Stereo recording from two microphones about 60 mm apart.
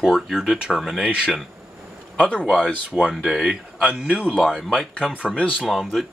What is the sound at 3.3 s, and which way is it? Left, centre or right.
Speech, centre.